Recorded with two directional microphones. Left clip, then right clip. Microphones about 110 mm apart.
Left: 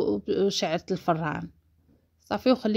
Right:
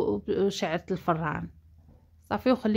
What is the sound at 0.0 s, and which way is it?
Speech, 15° left (ahead or behind).